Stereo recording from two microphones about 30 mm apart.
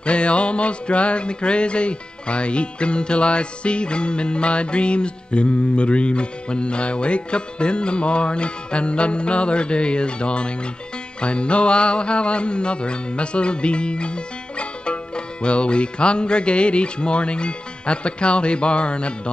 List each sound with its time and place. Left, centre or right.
0.0 s music: left